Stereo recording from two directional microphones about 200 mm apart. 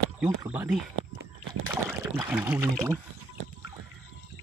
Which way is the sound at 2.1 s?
10° right (ahead or behind).